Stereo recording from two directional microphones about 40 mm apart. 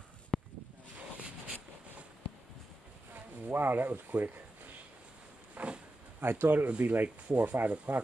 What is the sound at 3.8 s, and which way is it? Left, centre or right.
Speech, right.